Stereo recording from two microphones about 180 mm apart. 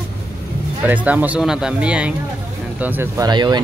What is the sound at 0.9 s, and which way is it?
Speech, 10° right (ahead or behind).